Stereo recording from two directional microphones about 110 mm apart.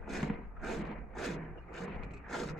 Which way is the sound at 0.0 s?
Centre (ahead or behind).